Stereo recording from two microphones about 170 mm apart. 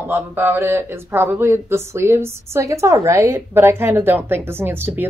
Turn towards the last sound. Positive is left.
turn(degrees=-10)  # may be behind; listen again after turning